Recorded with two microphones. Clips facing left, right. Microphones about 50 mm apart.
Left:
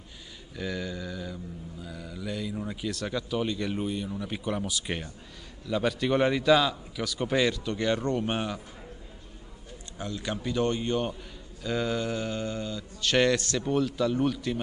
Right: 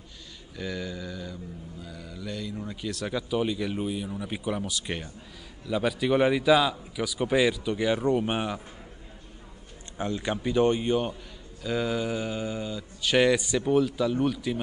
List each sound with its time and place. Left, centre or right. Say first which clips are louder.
0.6 s speech: even; centre
9.9 s speech: right 4 dB; right
11.6 s speech: right 1 dB; centre